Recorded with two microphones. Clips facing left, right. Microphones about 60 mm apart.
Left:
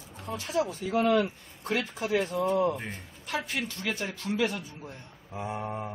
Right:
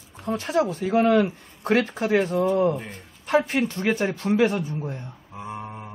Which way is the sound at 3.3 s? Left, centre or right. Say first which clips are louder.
Right 11 dB; right.